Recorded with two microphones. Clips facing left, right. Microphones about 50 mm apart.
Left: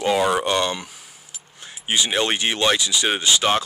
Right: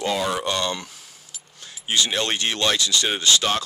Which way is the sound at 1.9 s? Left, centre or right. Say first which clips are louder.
Left 2 dB; centre.